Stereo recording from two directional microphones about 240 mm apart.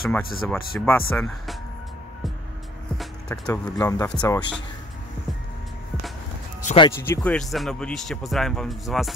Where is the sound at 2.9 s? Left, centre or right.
Centre.